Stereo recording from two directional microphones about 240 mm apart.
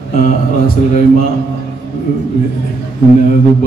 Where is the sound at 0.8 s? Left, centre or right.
Left.